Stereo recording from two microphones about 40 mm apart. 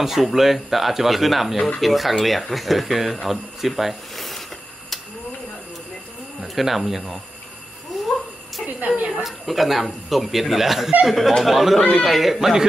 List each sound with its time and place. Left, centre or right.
0.0 s speech: centre
6.4 s speech: centre
8.6 s a sound: right
9.2 s speech: centre